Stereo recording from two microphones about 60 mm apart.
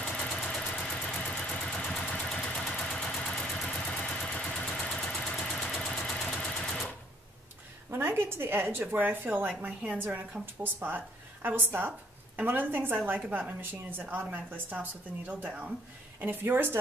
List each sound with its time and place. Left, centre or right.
0.2 s vehicle: centre
5.7 s engine: centre
6.3 s sewing machine: centre
7.9 s a woman's voice: right
16.2 s a woman's voice: right